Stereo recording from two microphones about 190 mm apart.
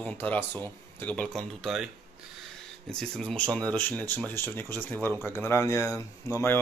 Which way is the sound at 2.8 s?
5° left (ahead or behind).